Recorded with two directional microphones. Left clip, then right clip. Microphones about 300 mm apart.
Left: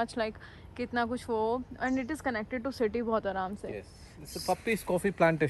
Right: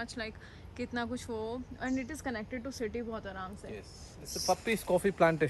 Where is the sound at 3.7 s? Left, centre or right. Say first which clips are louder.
Left 4 dB; left.